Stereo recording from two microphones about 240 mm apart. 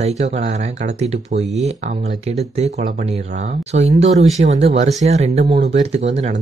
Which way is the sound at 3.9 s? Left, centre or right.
Right.